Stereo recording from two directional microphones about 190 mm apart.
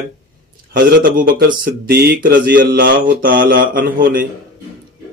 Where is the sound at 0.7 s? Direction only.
50° right (ahead or behind).